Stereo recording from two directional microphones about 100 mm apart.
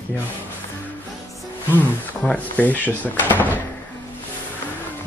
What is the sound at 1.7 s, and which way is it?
Speech, 15° left (ahead or behind).